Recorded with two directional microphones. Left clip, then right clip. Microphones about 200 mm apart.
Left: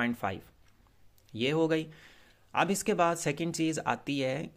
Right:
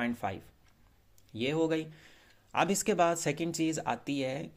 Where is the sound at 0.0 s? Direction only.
15° left (ahead or behind).